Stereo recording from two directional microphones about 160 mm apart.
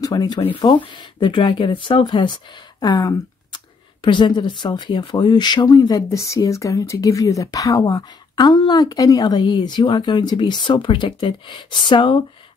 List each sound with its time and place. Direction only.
0.0 s speech: 25° left (ahead or behind)